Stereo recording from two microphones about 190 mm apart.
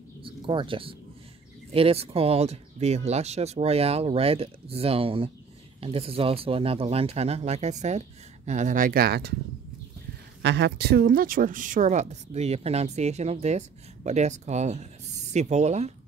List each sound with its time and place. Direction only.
0.2 s a sound: 25° right (ahead or behind)
1.7 s a woman's voice: 30° right (ahead or behind); by 9.3 s 55° right (ahead or behind)
10.4 s a woman's voice: 65° right (ahead or behind); by 15.9 s 35° right (ahead or behind)